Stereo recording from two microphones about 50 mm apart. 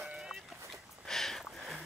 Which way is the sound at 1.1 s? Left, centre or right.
Centre.